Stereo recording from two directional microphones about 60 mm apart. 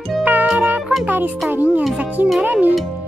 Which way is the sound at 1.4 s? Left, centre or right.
Right.